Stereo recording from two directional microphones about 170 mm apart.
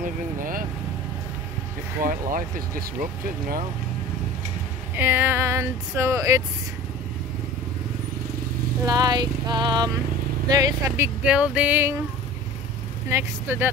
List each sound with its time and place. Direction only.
2.0 s speech: 55° right (ahead or behind)
4.9 s speech: 10° right (ahead or behind)
8.8 s vehicle: 20° right (ahead or behind)
11.2 s speech: 5° right (ahead or behind)
13.1 s speech: 15° right (ahead or behind)